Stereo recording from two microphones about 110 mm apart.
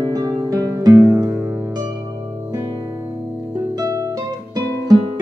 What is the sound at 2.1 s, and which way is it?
Harp, 25° right (ahead or behind).